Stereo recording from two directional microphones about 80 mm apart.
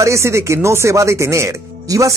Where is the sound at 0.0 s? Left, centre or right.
Right.